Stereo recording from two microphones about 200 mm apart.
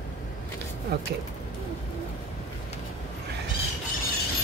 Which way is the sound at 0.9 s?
50° right (ahead or behind).